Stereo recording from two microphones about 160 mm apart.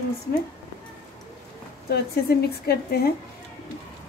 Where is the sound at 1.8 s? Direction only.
80° left.